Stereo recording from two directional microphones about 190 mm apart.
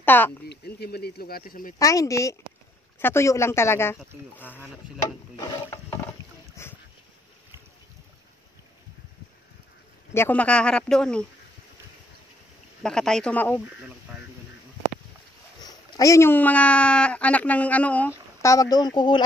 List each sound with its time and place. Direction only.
0.0 s speech: 10° left (ahead or behind)
0.5 s speech: 55° left (ahead or behind)
1.8 s speech: 15° left (ahead or behind)
5.3 s speech: 20° left (ahead or behind)
6.6 s dog: 15° left (ahead or behind)
10.1 s speech: 10° left (ahead or behind)
12.8 s speech: 5° left (ahead or behind)
15.6 s speech: 20° left (ahead or behind)